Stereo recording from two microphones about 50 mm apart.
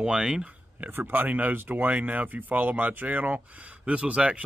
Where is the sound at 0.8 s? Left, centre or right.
Right.